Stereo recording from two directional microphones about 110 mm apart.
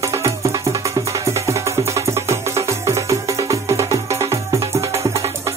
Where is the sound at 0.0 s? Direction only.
30° right (ahead or behind).